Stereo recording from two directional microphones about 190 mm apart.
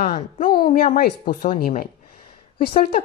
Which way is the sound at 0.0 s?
45° left (ahead or behind).